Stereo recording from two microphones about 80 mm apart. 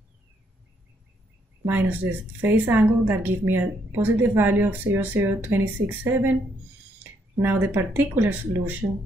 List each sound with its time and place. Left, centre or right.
1.7 s a woman's voice: right